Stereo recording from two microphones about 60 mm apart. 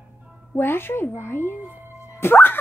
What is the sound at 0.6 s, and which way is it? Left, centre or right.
Speech, left.